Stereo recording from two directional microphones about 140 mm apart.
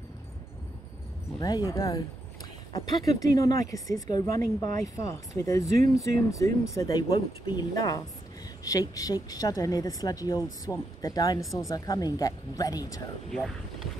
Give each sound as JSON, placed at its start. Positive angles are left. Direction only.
{"t": 1.4, "sound": "speech", "side_deg": 25}
{"t": 3.2, "sound": "speech", "side_deg": 25}
{"t": 13.3, "sound": "speech", "side_deg": 0}